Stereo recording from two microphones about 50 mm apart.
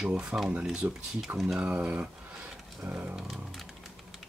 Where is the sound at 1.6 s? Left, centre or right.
Right.